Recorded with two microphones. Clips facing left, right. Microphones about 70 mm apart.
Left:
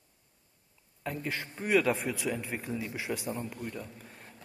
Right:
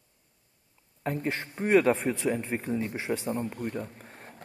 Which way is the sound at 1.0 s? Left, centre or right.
Right.